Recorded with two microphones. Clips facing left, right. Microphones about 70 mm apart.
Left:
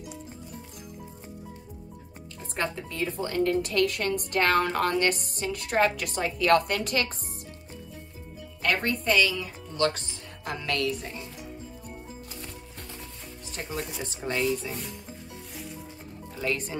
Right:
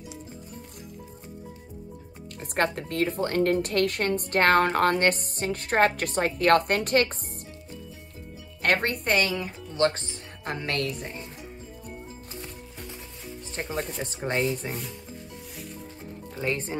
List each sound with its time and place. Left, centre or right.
2.4 s a woman's voice: right
8.6 s speech: right
13.6 s speech: right
16.3 s speech: right